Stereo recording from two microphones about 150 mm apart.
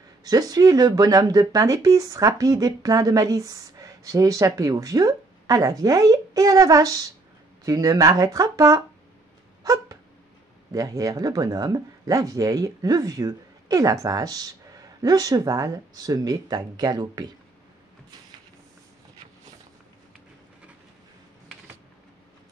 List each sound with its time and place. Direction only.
0.2 s speech: 25° right (ahead or behind)
9.6 s a sound: 25° right (ahead or behind)
10.7 s speech: 25° right (ahead or behind)